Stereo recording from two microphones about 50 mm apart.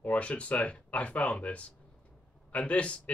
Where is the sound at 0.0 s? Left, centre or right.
Left.